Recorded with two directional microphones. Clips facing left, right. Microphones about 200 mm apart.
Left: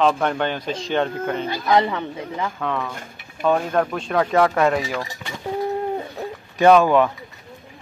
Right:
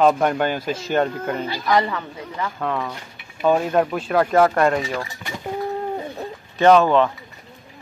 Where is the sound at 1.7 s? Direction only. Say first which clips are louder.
Left 2 dB; 20° left (ahead or behind).